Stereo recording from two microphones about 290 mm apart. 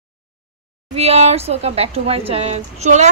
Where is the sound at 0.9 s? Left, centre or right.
Right.